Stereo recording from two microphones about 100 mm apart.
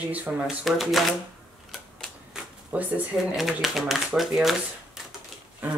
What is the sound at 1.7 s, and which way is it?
Camera, centre (ahead or behind).